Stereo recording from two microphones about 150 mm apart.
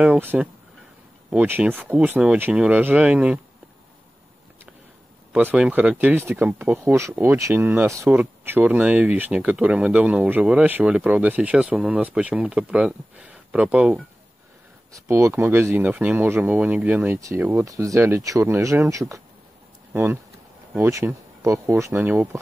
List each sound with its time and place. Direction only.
0.0 s speech: 10° right (ahead or behind)
5.3 s speech: 10° right (ahead or behind)
14.9 s speech: 20° right (ahead or behind)